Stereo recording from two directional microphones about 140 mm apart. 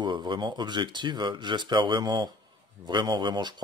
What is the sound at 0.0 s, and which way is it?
Speech, 30° right (ahead or behind).